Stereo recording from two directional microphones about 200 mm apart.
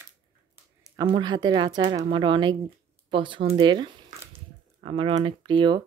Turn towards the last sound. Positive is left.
turn(degrees=-25)  # may be behind; listen again after turning